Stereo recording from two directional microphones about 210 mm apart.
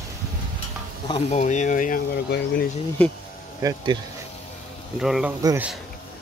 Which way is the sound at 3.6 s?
20° right (ahead or behind).